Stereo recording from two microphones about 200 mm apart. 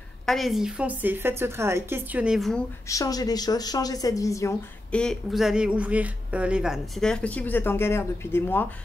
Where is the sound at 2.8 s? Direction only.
15° left (ahead or behind).